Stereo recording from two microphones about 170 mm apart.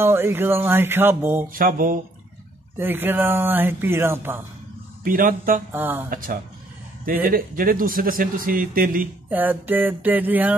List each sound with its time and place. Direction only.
0.0 s speech: 15° right (ahead or behind)
1.5 s speech: 55° right (ahead or behind)
2.8 s speech: 10° right (ahead or behind)
5.0 s speech: 55° right (ahead or behind)
5.7 s speech: 10° right (ahead or behind)
6.0 s speech: 55° right (ahead or behind)
9.3 s speech: 10° right (ahead or behind)